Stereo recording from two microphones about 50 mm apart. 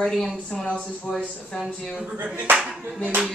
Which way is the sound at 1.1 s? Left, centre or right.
Left.